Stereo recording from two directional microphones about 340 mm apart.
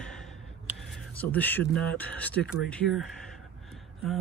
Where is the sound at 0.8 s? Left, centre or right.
Centre.